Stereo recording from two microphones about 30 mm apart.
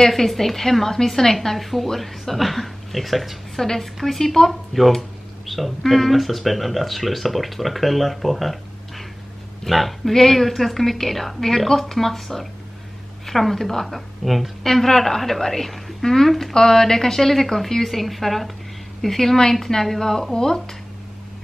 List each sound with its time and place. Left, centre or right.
0.1 s a woman's voice: centre
14.6 s a woman's voice: centre
17.8 s a woman's voice: centre